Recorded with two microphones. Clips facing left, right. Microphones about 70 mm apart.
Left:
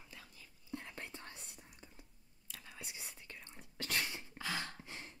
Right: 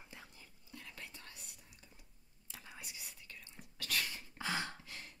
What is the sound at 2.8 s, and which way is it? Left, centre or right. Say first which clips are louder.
Whispering: left 2 dB; left.